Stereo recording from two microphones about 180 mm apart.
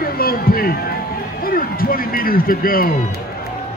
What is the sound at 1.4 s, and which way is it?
A man's voice, 55° left (ahead or behind).